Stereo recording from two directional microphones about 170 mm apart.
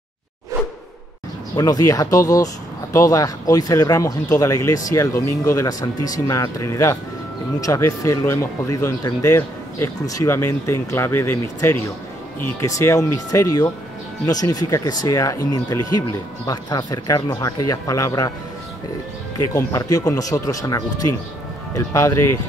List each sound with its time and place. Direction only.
1.6 s speech: 20° left (ahead or behind)
19.3 s speech: 20° left (ahead or behind)